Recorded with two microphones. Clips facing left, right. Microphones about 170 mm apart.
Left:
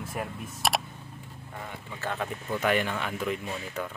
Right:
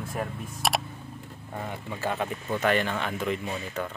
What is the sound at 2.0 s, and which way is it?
Speech, 10° right (ahead or behind).